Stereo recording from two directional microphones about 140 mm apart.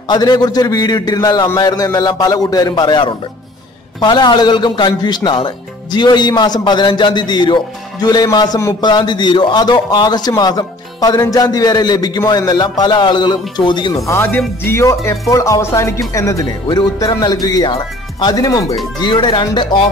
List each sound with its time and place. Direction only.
0.1 s a man's voice: 30° left (ahead or behind)
14.0 s a man's voice: 15° left (ahead or behind); by 19.9 s 35° left (ahead or behind)